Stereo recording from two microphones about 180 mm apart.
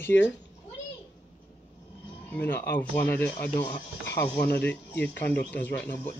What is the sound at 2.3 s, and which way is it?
Speech, 10° left (ahead or behind).